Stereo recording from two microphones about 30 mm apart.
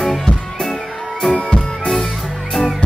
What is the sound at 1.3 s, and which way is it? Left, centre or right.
Music, left.